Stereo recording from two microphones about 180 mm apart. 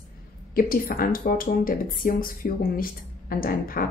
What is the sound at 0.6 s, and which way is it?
Speech, 55° left (ahead or behind).